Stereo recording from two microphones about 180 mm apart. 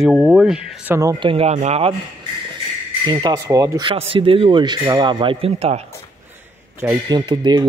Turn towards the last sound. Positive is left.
turn(degrees=-25)  # may be behind; listen again after turning